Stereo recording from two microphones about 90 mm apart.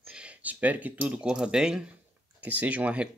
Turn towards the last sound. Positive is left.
turn(degrees=-15)  # may be behind; listen again after turning